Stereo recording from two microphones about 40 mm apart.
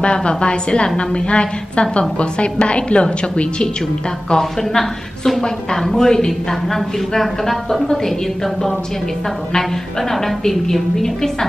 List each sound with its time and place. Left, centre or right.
0.0 s a woman's voice: left
4.3 s a woman's voice: centre
10.4 s a woman's voice: centre